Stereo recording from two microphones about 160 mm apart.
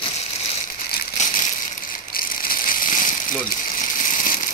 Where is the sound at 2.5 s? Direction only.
60° left (ahead or behind).